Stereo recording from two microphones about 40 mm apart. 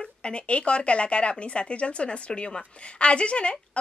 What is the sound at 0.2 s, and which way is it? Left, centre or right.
A woman's voice, left.